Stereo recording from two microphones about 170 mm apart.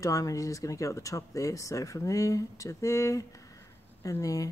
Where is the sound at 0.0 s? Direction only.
20° left (ahead or behind).